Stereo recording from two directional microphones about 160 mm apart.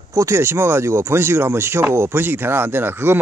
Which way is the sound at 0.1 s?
20° right (ahead or behind).